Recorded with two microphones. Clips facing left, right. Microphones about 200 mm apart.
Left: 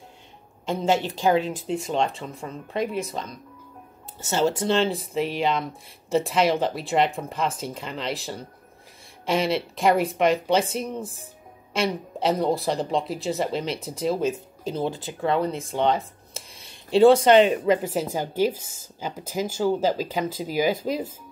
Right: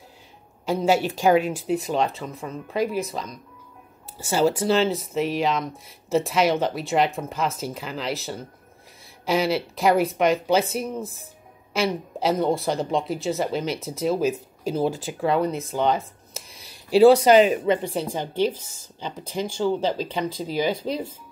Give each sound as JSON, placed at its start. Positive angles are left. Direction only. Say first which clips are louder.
{"t": 0.7, "sound": "speech", "louder": "right 2 dB", "side_deg": -10}
{"t": 14.9, "sound": "speech", "louder": "right 3 dB", "side_deg": -45}
{"t": 15.2, "sound": "speech", "louder": "right 1 dB", "side_deg": -5}
{"t": 16.9, "sound": "speech", "louder": "right 1 dB", "side_deg": -5}